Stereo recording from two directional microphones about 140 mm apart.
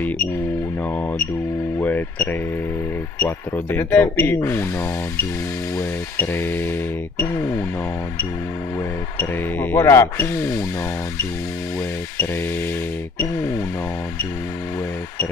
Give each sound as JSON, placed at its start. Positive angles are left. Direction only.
{"t": 0.9, "sound": "speech", "side_deg": 10}
{"t": 6.1, "sound": "speech", "side_deg": 15}
{"t": 9.2, "sound": "speech", "side_deg": 15}